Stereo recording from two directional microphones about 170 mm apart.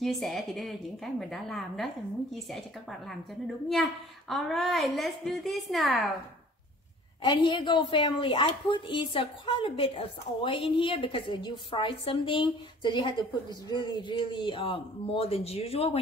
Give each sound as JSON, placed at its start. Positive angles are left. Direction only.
{"t": 0.0, "sound": "a woman's voice", "side_deg": 0}
{"t": 7.2, "sound": "speech", "side_deg": 25}